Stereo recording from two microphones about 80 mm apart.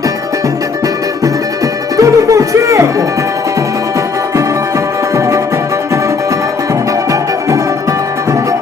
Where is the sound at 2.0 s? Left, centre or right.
Right.